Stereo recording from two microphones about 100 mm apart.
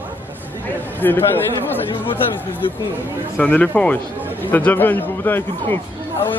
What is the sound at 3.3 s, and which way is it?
Speech, 15° left (ahead or behind).